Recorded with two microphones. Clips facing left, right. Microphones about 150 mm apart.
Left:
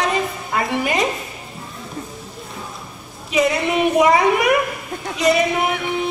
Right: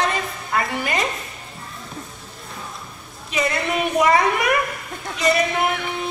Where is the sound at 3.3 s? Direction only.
Centre (ahead or behind).